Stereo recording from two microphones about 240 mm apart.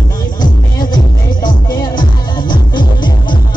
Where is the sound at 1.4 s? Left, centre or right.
Centre.